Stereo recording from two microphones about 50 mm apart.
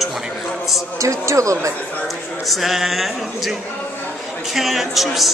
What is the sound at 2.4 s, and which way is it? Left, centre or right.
Speech, centre.